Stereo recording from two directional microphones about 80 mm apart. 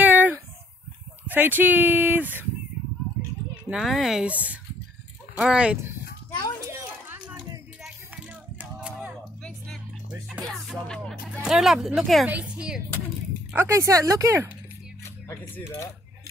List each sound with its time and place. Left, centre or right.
0.0 s a sound: right
1.2 s speech: right
3.7 s speech: centre
4.3 s speech: centre
6.6 s a sound: right
8.5 s a sound: centre
11.4 s speech: centre
12.3 s speech: centre
13.6 s speech: right
15.2 s coin: left